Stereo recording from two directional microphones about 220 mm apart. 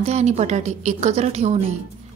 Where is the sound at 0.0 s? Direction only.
30° right (ahead or behind).